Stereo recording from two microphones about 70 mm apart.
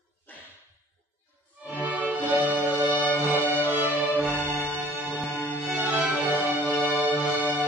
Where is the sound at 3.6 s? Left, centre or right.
Right.